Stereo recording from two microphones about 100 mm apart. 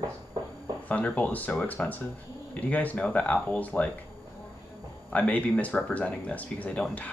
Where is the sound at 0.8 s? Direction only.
15° left (ahead or behind).